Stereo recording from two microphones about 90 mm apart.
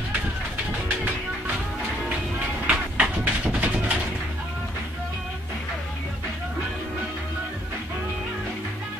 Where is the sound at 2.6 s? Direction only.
15° right (ahead or behind).